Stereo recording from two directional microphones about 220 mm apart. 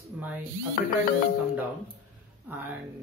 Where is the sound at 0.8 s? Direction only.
40° left (ahead or behind).